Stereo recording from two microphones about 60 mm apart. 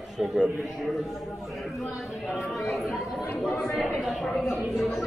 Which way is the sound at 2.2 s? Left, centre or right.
Centre.